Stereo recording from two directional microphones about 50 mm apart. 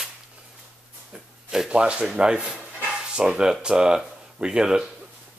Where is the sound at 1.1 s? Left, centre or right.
Centre.